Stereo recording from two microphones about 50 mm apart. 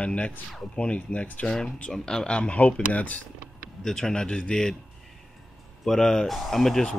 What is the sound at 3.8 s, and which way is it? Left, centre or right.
Speech, centre.